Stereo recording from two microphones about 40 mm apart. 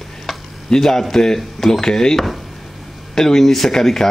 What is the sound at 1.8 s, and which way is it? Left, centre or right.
Speech, centre.